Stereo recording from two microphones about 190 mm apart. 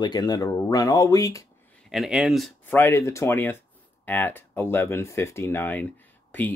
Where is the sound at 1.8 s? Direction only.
Centre (ahead or behind).